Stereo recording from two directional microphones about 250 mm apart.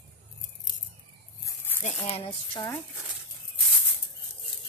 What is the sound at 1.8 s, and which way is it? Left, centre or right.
Speech, left.